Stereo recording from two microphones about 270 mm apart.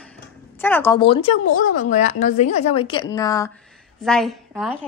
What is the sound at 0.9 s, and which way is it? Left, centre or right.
A woman's voice, centre.